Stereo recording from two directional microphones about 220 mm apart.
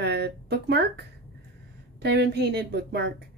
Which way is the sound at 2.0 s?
50° right (ahead or behind).